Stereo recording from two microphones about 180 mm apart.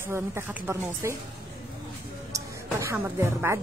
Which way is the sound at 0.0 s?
15° right (ahead or behind).